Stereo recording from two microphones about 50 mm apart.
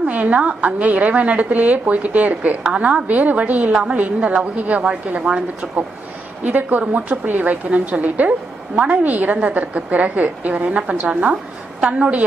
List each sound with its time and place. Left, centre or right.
0.0 s a woman's voice: right
6.4 s a woman's voice: right